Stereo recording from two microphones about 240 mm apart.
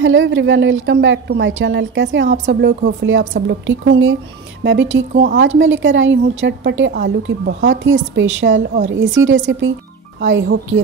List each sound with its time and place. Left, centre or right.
0.0 s a woman's voice: right